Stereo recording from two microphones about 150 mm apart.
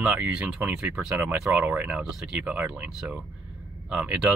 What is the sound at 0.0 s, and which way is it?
Speech, 10° right (ahead or behind).